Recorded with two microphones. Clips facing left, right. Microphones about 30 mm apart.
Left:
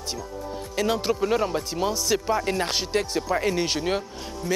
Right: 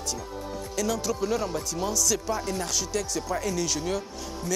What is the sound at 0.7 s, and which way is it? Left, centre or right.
Speech, left.